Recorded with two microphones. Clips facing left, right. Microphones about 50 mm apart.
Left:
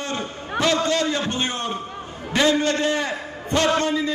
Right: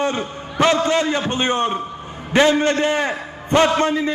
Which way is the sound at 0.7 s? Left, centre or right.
Right.